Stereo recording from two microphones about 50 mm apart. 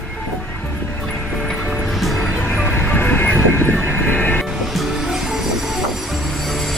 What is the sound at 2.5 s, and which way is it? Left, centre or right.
Vehicle, left.